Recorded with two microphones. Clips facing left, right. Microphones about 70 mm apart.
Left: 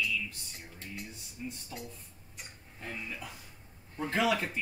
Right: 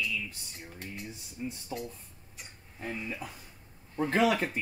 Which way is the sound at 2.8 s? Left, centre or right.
Centre.